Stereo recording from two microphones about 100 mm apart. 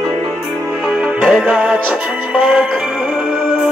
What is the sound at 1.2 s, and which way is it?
Music, 10° right (ahead or behind).